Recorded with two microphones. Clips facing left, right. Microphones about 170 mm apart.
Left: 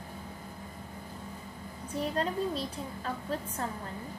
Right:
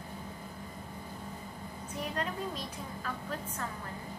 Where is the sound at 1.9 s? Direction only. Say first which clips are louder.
Left 5 dB; 30° left (ahead or behind).